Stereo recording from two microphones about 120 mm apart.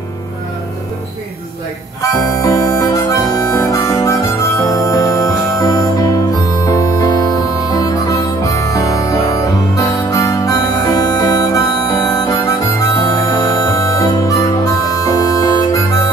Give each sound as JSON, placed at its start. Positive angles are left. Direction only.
{"t": 2.0, "sound": "harmonica", "side_deg": 25}